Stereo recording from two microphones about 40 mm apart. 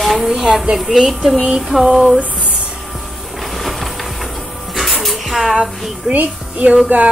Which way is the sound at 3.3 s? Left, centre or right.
Centre.